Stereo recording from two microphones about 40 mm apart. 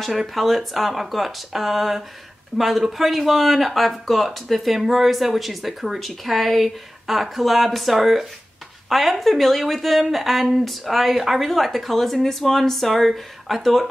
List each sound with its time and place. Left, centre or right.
0.3 s speech: centre